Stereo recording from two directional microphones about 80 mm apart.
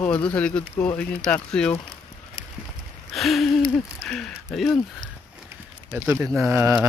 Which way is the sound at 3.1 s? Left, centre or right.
Centre.